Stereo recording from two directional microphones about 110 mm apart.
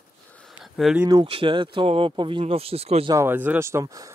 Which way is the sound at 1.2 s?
50° right (ahead or behind).